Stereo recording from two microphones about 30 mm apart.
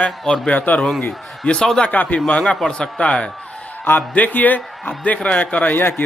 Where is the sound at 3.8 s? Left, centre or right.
Left.